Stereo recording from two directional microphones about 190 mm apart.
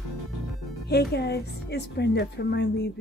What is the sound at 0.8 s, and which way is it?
Speech, 60° left (ahead or behind).